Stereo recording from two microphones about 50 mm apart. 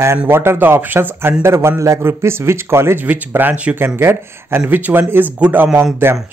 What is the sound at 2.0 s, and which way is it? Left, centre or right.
Speech, right.